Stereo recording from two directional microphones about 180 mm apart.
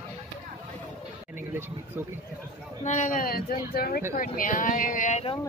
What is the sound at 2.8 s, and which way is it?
Speech, 40° left (ahead or behind).